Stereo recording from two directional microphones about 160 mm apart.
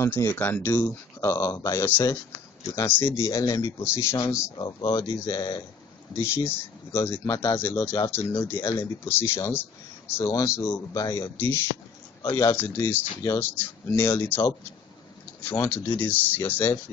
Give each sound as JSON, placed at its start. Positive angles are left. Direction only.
{"t": 0.0, "sound": "speech", "side_deg": 15}
{"t": 6.3, "sound": "speech", "side_deg": 15}